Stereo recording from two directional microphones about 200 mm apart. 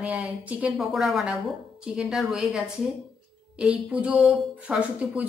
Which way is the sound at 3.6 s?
5° right (ahead or behind).